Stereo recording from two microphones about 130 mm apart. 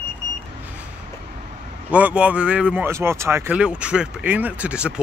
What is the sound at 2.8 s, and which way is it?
Speech, 20° right (ahead or behind).